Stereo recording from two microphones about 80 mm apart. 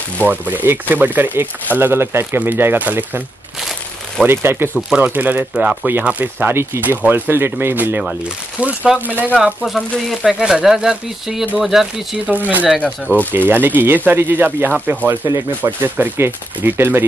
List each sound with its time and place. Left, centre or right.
0.2 s speech: right
4.3 s speech: right
9.4 s speech: centre
12.3 s speech: right
12.8 s speech: centre
13.5 s speech: right